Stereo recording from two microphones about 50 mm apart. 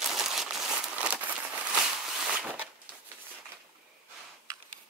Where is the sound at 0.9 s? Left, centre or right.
Right.